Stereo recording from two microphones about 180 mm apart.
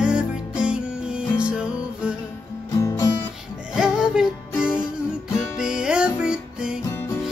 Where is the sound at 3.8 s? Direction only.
5° right (ahead or behind).